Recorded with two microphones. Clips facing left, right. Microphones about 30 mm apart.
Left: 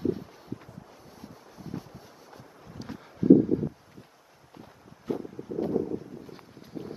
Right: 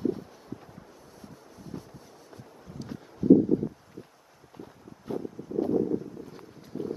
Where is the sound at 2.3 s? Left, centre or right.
Centre.